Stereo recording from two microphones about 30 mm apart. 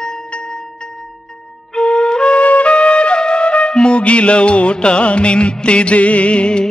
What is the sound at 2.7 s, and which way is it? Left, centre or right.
Music, left.